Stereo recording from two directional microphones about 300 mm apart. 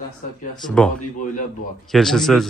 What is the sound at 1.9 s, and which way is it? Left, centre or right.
Speech, centre.